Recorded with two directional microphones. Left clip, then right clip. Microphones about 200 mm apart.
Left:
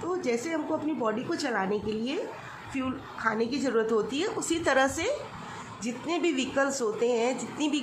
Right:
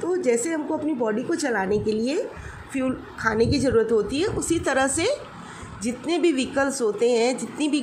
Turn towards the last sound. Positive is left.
turn(degrees=-10)  # may be behind; listen again after turning